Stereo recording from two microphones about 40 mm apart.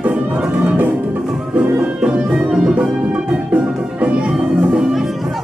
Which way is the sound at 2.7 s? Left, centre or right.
Right.